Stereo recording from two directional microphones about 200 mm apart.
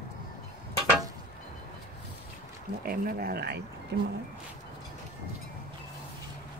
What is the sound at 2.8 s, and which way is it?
Speech, 50° right (ahead or behind).